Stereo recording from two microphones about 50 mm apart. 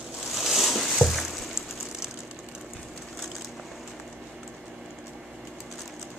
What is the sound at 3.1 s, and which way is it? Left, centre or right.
Crushing, centre.